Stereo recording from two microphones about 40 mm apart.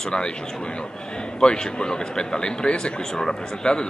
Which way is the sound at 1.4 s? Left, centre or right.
Left.